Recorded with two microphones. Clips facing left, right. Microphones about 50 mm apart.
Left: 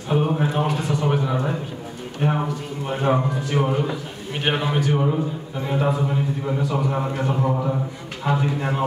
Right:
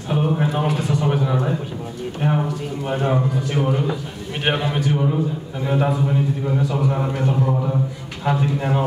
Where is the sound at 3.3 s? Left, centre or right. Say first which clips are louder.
Right 1 dB; centre.